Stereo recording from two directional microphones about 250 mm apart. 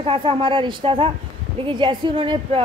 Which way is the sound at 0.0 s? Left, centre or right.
Right.